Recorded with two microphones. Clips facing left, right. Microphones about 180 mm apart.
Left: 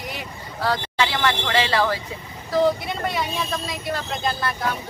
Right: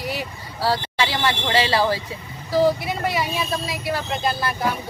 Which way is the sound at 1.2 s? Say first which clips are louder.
Right 3 dB; 10° right (ahead or behind).